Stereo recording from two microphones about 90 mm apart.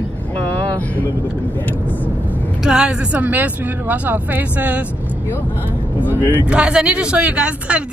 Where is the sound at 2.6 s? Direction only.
10° right (ahead or behind).